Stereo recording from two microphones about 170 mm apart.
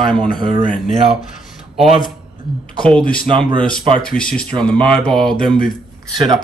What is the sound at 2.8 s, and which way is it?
Speech, 5° left (ahead or behind).